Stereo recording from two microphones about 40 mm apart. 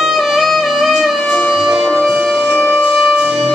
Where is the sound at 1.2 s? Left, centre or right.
Left.